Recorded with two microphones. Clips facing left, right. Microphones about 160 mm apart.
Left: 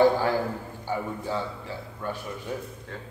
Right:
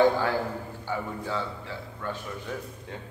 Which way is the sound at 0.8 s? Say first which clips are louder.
Left 3 dB; 15° left (ahead or behind).